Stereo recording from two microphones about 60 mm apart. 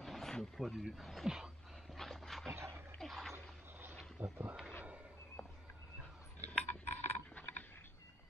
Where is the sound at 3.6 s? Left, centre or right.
Right.